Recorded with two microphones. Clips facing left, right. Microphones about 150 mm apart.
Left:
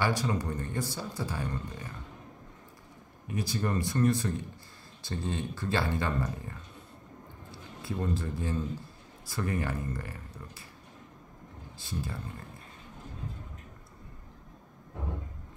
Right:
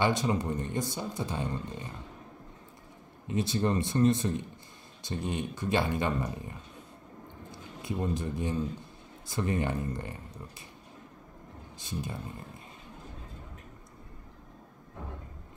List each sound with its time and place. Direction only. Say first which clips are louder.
0.0 s speech: right 2 dB; 20° right (ahead or behind)
3.3 s speech: right 4 dB; 25° right (ahead or behind)
7.8 s speech: right 1 dB; 15° right (ahead or behind)
11.8 s speech: even; 20° right (ahead or behind)